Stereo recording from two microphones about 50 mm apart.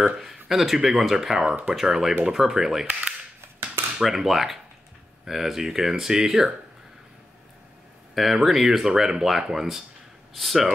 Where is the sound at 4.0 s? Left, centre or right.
Centre.